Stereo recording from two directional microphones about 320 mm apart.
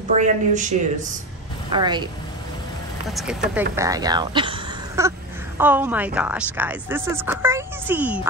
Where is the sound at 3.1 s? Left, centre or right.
Centre.